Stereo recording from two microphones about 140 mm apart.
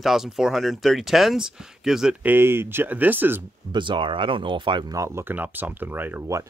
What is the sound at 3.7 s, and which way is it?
Speech, 35° right (ahead or behind).